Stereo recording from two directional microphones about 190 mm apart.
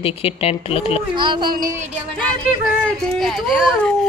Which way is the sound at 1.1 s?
25° right (ahead or behind).